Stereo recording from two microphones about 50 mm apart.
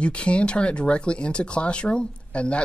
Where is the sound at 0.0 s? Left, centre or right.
Left.